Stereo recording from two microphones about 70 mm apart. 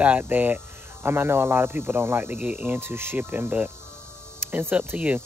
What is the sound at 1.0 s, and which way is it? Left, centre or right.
Cricket, right.